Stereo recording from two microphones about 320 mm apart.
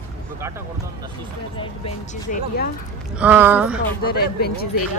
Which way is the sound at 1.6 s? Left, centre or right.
Centre.